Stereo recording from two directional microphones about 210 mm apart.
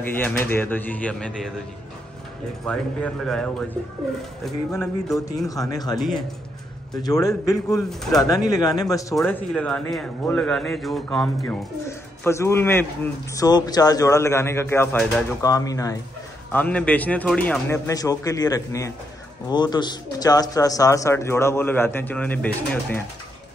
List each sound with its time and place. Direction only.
0.0 s a man's voice: 10° left (ahead or behind)
2.6 s speech: 5° left (ahead or behind)
5.5 s a man's voice: 15° left (ahead or behind)
7.0 s a man's voice: 15° left (ahead or behind)
7.9 s speech: centre (ahead or behind)
8.2 s a man's voice: 15° left (ahead or behind)
9.1 s speech: 5° left (ahead or behind)
12.2 s a man's voice: 10° left (ahead or behind)